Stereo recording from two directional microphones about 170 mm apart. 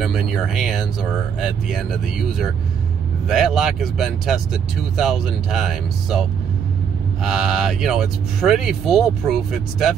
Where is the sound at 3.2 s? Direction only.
Centre (ahead or behind).